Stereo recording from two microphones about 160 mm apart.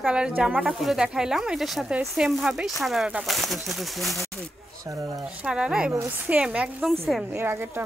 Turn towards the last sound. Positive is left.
turn(degrees=-15)  # may be behind; listen again after turning